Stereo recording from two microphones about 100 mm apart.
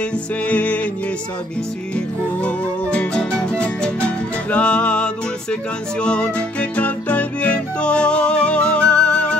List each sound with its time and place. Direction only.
0.5 s music: 15° left (ahead or behind)
2.4 s music: 15° left (ahead or behind)